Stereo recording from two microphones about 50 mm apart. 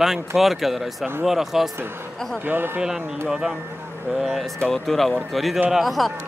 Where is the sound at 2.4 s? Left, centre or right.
Right.